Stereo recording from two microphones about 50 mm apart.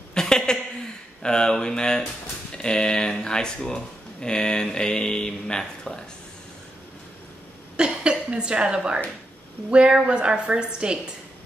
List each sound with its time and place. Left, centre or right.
0.1 s a sound: centre
1.2 s speech: centre
7.7 s a woman's voice: centre